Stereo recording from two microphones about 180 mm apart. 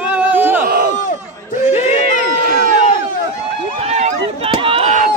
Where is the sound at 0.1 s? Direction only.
10° right (ahead or behind).